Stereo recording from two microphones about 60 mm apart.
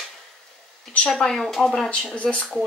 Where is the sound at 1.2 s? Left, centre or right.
Centre.